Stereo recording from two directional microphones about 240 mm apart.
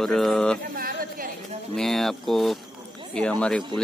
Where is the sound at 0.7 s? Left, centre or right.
Right.